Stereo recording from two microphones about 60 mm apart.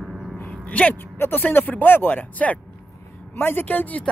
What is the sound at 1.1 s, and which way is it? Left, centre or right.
Speech, left.